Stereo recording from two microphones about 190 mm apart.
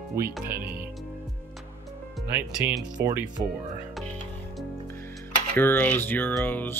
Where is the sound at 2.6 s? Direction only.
10° right (ahead or behind).